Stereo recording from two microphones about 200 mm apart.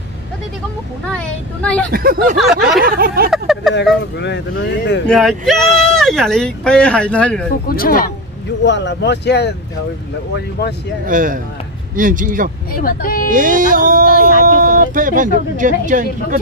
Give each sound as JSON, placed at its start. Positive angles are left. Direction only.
{"t": 1.1, "sound": "speech", "side_deg": 5}
{"t": 1.9, "sound": "music", "side_deg": -50}
{"t": 3.3, "sound": "a sound", "side_deg": 0}
{"t": 4.2, "sound": "speech", "side_deg": 60}
{"t": 5.0, "sound": "speech", "side_deg": 0}
{"t": 7.6, "sound": "speech", "side_deg": 45}
{"t": 8.6, "sound": "speech", "side_deg": 60}
{"t": 11.1, "sound": "music", "side_deg": -40}
{"t": 12.7, "sound": "speech", "side_deg": 45}
{"t": 13.3, "sound": "music", "side_deg": -40}
{"t": 14.2, "sound": "speech", "side_deg": -45}